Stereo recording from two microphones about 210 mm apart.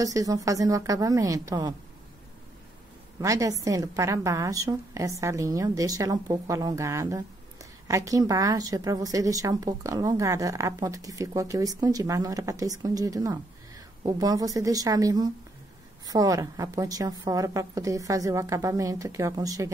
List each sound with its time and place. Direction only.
0.0 s a woman's voice: 15° right (ahead or behind)
3.2 s a woman's voice: 15° right (ahead or behind)